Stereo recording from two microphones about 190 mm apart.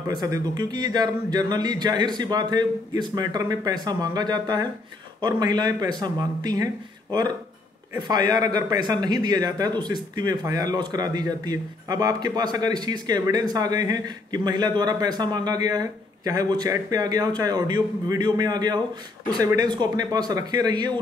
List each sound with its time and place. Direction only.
0.1 s a man's voice: 20° right (ahead or behind)